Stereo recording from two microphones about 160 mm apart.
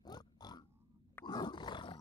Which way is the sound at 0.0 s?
25° left (ahead or behind).